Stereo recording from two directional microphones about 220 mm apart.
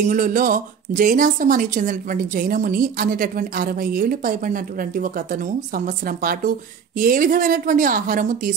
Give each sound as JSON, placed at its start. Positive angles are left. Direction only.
{"t": 0.1, "sound": "a woman's voice", "side_deg": -40}